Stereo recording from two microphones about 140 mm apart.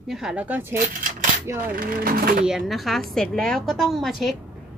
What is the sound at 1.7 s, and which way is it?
Speech, 90° right.